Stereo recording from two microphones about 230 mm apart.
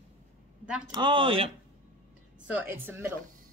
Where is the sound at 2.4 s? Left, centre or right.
Centre.